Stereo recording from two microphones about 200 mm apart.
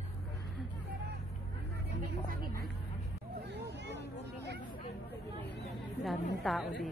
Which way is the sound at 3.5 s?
60° right (ahead or behind).